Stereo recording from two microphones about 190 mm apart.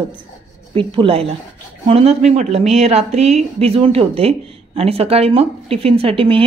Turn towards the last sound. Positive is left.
turn(degrees=-30)  # may be behind; listen again after turning